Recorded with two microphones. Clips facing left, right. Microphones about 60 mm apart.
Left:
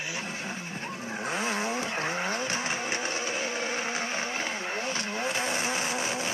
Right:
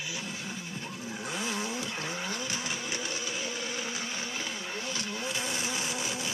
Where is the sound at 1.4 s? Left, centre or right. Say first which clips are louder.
Left 3 dB; left.